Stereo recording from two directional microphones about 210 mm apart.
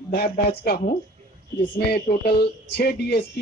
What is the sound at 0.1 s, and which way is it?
Speech, 50° left (ahead or behind).